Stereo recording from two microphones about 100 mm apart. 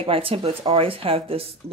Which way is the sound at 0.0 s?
65° right (ahead or behind).